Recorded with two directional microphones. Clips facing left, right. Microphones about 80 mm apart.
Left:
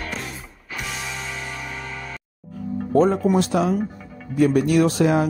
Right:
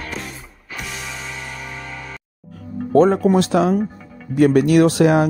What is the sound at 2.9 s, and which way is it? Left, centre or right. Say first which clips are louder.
Speech: right 4 dB; right.